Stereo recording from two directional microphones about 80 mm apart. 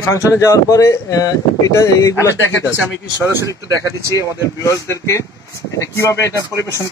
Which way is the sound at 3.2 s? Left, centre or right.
Right.